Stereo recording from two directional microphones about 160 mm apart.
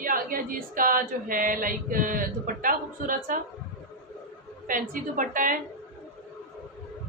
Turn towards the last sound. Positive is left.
turn(degrees=-60)  # may be behind; listen again after turning